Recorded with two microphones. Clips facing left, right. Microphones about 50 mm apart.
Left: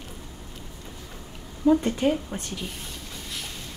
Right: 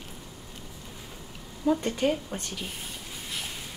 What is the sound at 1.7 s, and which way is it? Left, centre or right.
Speech, centre.